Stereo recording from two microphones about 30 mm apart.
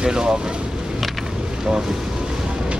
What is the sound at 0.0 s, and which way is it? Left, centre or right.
Speech, right.